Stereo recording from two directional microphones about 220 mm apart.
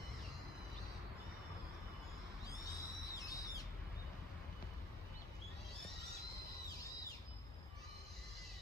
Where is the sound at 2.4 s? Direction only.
15° left (ahead or behind).